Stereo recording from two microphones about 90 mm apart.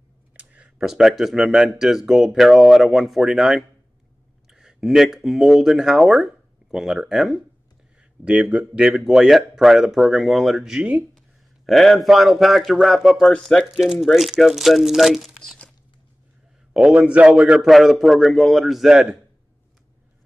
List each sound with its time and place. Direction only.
0.3 s a sound: 15° right (ahead or behind)
0.8 s speech: 5° right (ahead or behind)
16.7 s a man's voice: 10° right (ahead or behind)
17.6 s speech: centre (ahead or behind)